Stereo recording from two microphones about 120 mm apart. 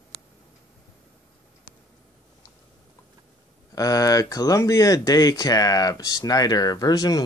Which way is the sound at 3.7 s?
30° left (ahead or behind).